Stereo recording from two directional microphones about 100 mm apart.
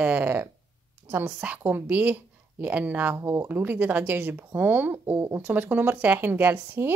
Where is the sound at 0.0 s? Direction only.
15° right (ahead or behind).